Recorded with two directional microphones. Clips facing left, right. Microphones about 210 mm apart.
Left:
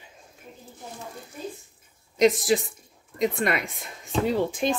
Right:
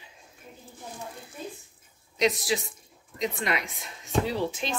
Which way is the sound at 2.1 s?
50° left (ahead or behind).